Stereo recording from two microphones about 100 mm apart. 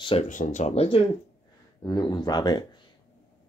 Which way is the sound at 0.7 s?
85° left.